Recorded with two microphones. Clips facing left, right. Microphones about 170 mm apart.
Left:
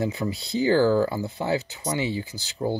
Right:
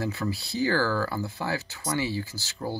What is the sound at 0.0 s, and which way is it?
Speech, 20° left (ahead or behind).